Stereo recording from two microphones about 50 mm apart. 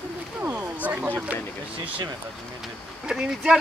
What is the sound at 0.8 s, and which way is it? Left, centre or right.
Speech, right.